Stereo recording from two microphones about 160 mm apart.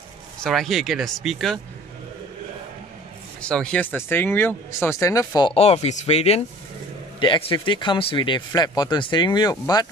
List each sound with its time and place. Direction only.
0.4 s speech: centre (ahead or behind)
3.3 s speech: 5° left (ahead or behind); by 5.5 s 20° left (ahead or behind)
5.5 s speech: 40° left (ahead or behind)